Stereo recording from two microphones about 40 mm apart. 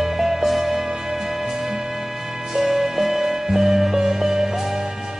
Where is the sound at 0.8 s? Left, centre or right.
Centre.